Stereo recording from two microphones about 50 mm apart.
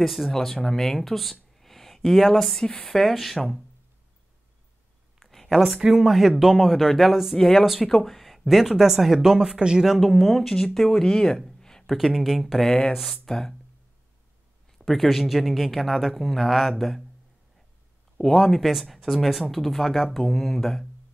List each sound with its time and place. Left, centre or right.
0.0 s speech: centre
5.2 s a sound: centre
5.9 s speech: centre
9.9 s speech: centre
14.8 s speech: centre
18.1 s speech: centre